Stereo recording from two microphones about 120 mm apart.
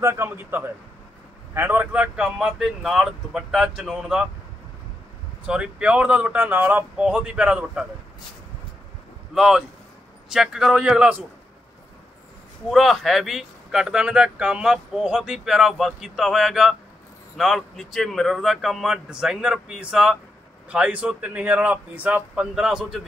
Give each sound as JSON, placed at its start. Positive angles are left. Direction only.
{"t": 0.0, "sound": "a man's voice", "side_deg": -20}
{"t": 5.5, "sound": "speech", "side_deg": -5}
{"t": 9.3, "sound": "speech", "side_deg": -5}
{"t": 12.6, "sound": "speech", "side_deg": 0}